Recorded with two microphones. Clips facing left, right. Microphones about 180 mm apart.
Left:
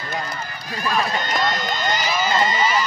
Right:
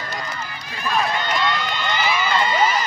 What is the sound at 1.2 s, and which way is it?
Run, 40° left (ahead or behind).